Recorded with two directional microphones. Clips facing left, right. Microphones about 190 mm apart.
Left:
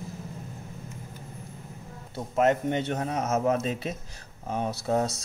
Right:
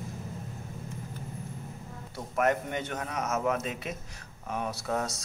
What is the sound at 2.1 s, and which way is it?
A man's voice, 25° left (ahead or behind).